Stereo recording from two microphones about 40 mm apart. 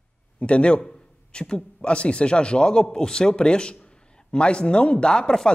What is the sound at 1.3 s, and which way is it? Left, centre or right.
Speech, centre.